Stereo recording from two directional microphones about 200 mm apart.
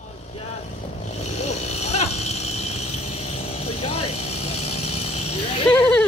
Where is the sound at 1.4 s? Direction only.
35° left (ahead or behind).